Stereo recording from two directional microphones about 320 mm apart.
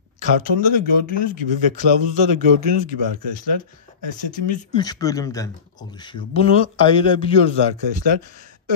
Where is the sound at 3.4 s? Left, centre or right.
Left.